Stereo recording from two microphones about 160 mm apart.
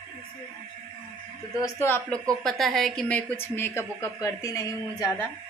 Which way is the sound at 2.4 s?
Centre (ahead or behind).